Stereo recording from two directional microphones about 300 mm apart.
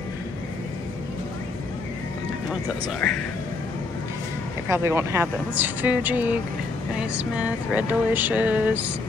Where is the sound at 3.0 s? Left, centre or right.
Centre.